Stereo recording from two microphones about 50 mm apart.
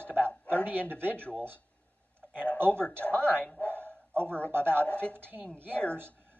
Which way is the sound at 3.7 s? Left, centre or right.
Right.